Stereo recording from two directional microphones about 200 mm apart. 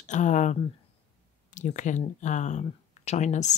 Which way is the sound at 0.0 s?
35° left (ahead or behind).